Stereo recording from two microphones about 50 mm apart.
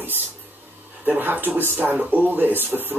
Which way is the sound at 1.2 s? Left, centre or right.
Right.